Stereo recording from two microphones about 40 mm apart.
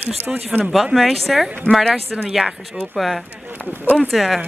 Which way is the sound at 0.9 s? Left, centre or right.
Centre.